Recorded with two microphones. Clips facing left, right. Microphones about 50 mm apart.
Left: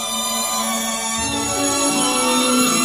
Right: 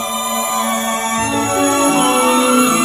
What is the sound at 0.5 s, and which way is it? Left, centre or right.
Music, right.